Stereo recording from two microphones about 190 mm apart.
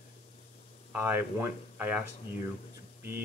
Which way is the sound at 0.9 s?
10° right (ahead or behind).